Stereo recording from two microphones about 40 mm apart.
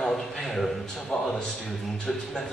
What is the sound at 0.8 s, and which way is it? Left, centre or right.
A man's voice, centre.